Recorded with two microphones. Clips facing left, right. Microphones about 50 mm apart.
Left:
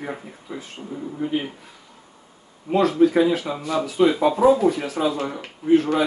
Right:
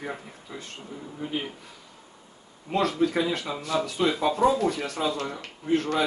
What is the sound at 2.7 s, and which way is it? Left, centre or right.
Speech, centre.